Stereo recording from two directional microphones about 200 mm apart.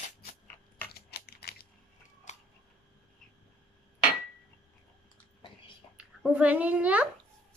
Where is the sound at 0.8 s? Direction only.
50° left (ahead or behind).